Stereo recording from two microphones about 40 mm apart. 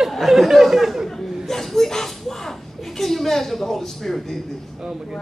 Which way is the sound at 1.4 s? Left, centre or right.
Centre.